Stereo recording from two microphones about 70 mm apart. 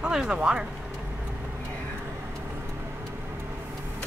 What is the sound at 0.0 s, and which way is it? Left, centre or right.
Speech, centre.